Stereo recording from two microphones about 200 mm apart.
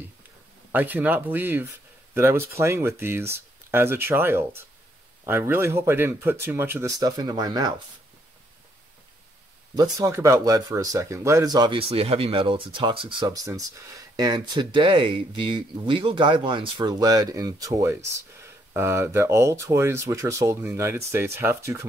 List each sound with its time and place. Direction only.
0.7 s speech: 10° right (ahead or behind)
9.8 s speech: 15° right (ahead or behind)